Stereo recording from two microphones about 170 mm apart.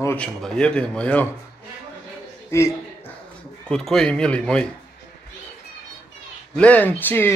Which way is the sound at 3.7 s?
5° left (ahead or behind).